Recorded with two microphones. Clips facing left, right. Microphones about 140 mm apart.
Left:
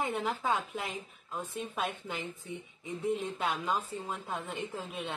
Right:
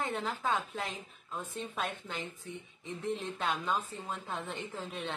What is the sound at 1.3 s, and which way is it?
Speech, 5° left (ahead or behind).